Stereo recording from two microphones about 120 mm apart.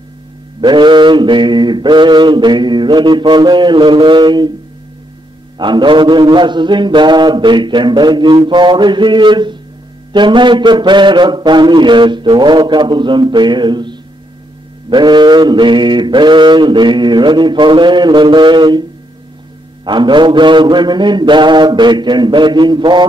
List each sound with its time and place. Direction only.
0.6 s mantra: 40° right (ahead or behind)
5.6 s mantra: 40° right (ahead or behind)